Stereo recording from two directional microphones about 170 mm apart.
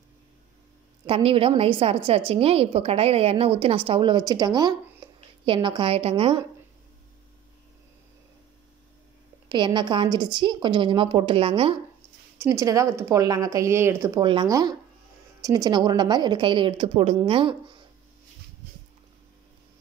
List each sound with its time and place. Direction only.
1.0 s a woman's voice: 35° right (ahead or behind)
9.5 s a woman's voice: 25° right (ahead or behind)
12.4 s a woman's voice: 20° right (ahead or behind)
14.2 s a woman's voice: 25° right (ahead or behind)